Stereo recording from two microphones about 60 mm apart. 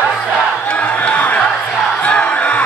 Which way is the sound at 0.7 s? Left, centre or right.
Left.